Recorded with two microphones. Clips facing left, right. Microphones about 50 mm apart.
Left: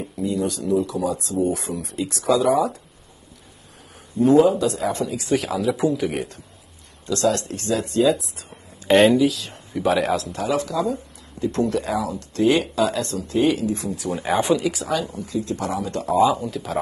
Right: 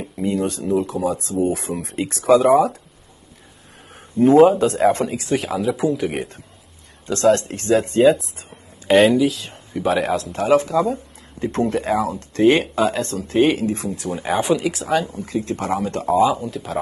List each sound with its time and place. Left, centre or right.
0.2 s speech: right
4.3 s speech: right
5.2 s speech: centre
7.1 s speech: right
8.5 s speech: centre
10.4 s speech: right
14.1 s speech: centre
15.1 s speech: right
16.2 s speech: centre